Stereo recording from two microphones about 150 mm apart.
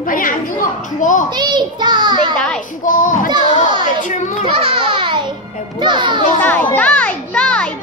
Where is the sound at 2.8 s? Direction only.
60° left (ahead or behind).